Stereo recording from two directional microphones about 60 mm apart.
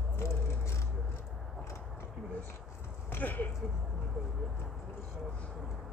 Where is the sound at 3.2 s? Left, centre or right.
Left.